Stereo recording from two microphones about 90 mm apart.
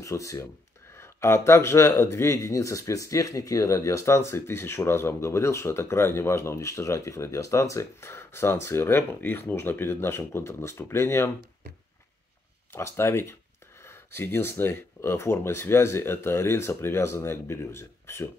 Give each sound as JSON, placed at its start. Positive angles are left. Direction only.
{"t": 0.0, "sound": "speech", "side_deg": 35}
{"t": 12.7, "sound": "speech", "side_deg": 30}